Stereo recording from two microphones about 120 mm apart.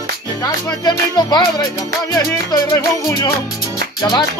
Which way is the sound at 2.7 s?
25° left (ahead or behind).